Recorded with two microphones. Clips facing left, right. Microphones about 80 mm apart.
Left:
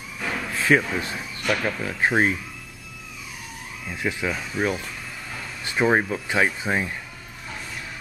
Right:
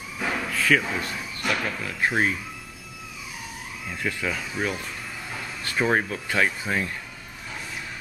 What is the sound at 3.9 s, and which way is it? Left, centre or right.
Speech, centre.